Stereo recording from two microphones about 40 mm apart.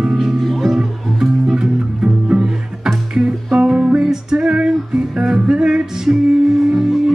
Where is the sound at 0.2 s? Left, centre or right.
Centre.